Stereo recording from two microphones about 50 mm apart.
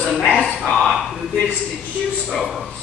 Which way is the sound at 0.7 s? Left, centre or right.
Centre.